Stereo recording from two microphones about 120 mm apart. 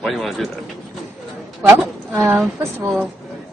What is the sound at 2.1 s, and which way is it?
Speech, 25° right (ahead or behind).